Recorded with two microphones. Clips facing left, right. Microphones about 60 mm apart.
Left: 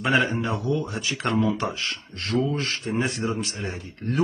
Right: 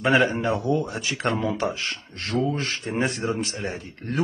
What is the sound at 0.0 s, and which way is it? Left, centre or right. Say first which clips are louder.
A man's voice: right 2 dB; right.